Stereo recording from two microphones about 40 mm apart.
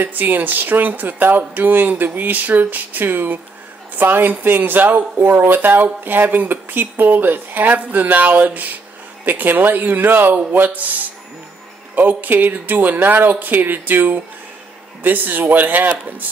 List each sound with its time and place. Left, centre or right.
0.0 s speech: right
5.3 s speech: right